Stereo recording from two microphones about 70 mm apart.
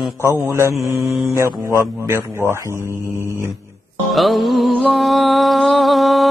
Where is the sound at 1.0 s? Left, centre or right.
Centre.